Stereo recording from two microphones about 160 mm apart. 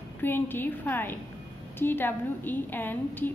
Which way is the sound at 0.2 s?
15° left (ahead or behind).